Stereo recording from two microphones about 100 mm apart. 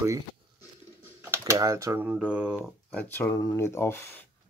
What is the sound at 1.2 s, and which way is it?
Typing, 25° right (ahead or behind).